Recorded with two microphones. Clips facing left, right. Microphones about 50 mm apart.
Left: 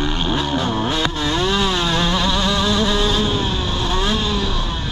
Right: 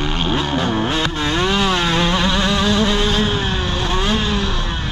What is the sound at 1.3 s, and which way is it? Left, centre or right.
Vehicle, right.